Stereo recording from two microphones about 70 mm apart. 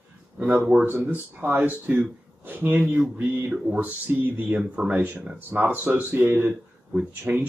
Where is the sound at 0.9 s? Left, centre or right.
Right.